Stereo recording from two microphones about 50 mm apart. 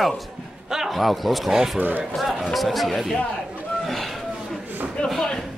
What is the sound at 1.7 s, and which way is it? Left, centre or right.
Speech, right.